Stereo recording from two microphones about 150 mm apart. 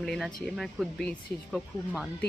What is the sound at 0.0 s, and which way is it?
Speech, centre (ahead or behind).